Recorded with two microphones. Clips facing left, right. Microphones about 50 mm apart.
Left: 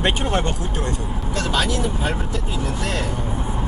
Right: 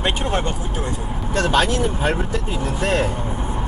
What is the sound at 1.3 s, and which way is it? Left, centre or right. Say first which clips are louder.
Speech: right 4 dB; right.